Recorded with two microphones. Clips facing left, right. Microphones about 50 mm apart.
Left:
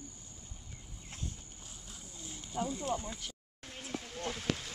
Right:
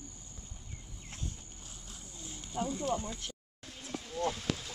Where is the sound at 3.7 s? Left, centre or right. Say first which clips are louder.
Left 1 dB; left.